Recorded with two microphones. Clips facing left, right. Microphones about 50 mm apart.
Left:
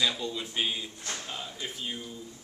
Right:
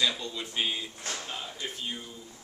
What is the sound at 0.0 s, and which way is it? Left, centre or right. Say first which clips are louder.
Speech: even; centre.